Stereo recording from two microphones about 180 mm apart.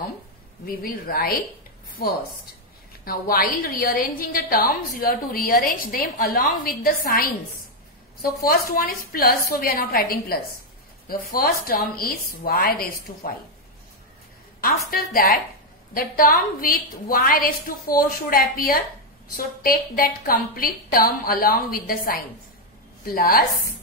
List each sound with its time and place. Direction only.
0.7 s a woman's voice: 55° left (ahead or behind)
8.5 s a woman's voice: 55° left (ahead or behind)
14.9 s a woman's voice: 55° left (ahead or behind)